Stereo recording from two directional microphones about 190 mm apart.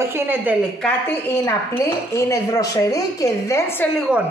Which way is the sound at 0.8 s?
10° left (ahead or behind).